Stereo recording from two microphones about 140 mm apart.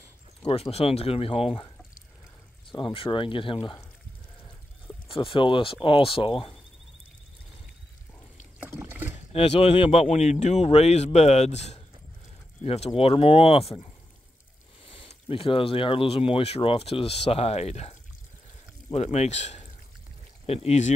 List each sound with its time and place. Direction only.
0.5 s speech: 45° left (ahead or behind)
2.7 s speech: 40° left (ahead or behind)
5.0 s speech: 40° left (ahead or behind)
8.5 s rowboat: 15° right (ahead or behind)
9.3 s speech: 45° left (ahead or behind)
10.1 s speech: 55° left (ahead or behind)
14.9 s speech: 40° left (ahead or behind)
18.9 s speech: 50° left (ahead or behind)